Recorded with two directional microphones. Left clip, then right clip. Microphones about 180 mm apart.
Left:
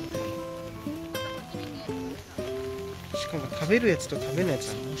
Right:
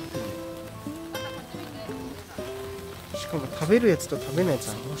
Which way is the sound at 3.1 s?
15° right (ahead or behind).